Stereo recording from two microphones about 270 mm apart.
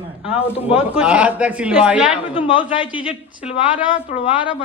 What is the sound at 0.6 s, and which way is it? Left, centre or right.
Speech, centre.